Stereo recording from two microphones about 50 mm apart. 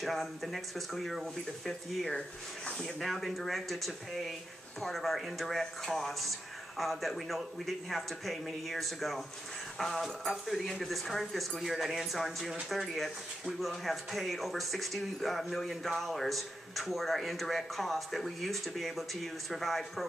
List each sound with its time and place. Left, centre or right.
0.0 s speech: centre
2.1 s speech: centre
3.0 s speech: centre